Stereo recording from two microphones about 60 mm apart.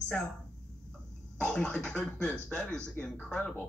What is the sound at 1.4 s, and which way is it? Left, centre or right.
Speech, centre.